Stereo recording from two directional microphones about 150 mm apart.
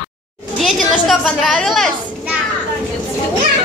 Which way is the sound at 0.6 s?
Centre (ahead or behind).